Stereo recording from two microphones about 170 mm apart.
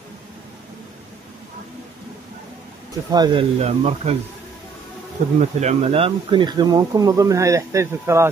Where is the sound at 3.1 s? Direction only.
25° right (ahead or behind).